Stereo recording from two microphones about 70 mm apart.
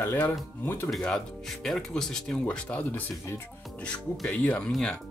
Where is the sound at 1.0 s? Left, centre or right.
Centre.